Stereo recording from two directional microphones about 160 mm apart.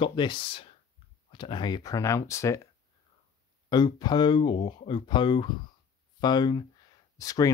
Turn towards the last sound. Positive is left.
turn(degrees=20)  # may be behind; listen again after turning